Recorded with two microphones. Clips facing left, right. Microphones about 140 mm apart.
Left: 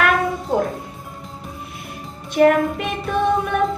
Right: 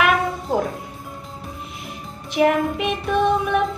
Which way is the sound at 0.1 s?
Centre (ahead or behind).